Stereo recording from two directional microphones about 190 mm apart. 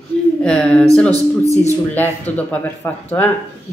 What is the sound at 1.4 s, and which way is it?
Speech, 35° left (ahead or behind).